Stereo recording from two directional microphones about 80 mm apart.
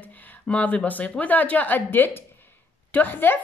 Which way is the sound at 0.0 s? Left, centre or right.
Left.